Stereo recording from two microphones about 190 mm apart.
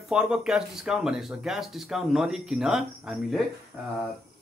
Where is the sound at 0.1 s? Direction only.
5° right (ahead or behind).